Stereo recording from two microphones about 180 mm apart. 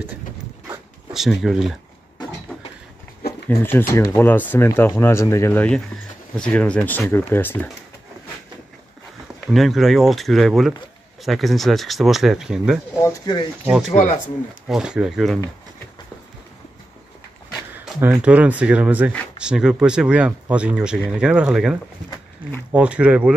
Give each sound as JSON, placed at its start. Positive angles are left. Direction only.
{"t": 1.1, "sound": "speech", "side_deg": 0}
{"t": 3.4, "sound": "speech", "side_deg": 10}
{"t": 9.5, "sound": "speech", "side_deg": 0}
{"t": 13.0, "sound": "speech", "side_deg": 20}
{"t": 13.7, "sound": "speech", "side_deg": 0}
{"t": 17.8, "sound": "speech", "side_deg": -10}